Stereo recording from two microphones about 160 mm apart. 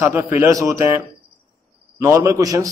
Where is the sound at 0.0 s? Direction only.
15° right (ahead or behind).